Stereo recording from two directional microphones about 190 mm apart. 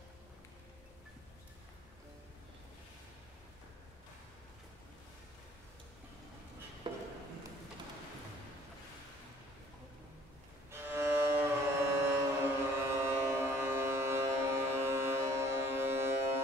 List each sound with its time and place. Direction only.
6.8 s a sound: 25° right (ahead or behind)
10.7 s music: 10° right (ahead or behind)
12.7 s ship: 15° right (ahead or behind)